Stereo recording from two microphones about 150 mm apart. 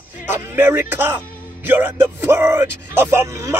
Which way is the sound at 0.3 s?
15° right (ahead or behind).